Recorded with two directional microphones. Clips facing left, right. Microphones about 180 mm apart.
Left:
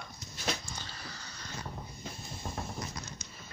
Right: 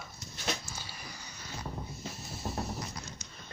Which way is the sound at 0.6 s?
10° right (ahead or behind).